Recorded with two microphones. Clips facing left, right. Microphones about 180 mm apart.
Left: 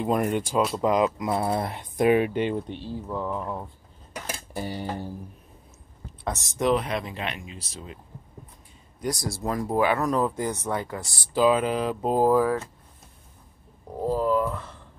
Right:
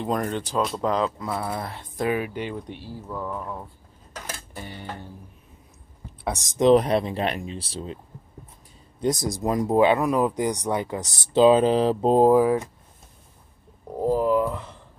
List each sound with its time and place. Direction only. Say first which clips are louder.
0.0 s speech: left 2 dB; 10° left (ahead or behind)
4.6 s tick: left 8 dB; 35° left (ahead or behind)
6.2 s speech: right 5 dB; 15° right (ahead or behind)
6.7 s speech: right 9 dB; 35° right (ahead or behind)
9.0 s speech: right 5 dB; 20° right (ahead or behind)
14.0 s a sound: right 3 dB; 15° right (ahead or behind)